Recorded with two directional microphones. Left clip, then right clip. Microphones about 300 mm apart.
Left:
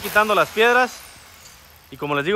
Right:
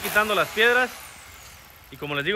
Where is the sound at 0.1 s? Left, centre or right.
Centre.